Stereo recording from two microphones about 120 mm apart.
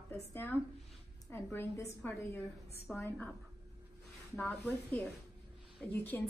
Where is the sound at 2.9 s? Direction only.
Centre (ahead or behind).